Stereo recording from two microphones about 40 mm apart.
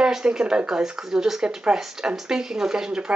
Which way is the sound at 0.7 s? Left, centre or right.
Centre.